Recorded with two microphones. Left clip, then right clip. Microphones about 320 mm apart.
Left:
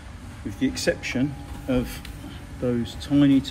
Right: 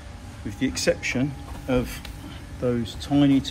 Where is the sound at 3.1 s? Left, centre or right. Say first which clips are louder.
Left 1 dB; right.